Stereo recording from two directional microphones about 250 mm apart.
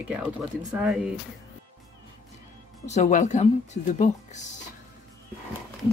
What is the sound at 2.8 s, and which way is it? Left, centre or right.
Speech, left.